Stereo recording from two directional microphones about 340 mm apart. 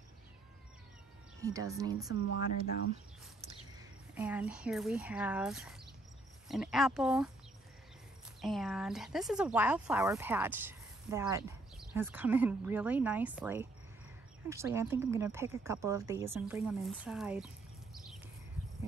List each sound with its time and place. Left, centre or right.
1.4 s speech: centre
2.2 s speech: left
4.1 s speech: centre
8.4 s speech: centre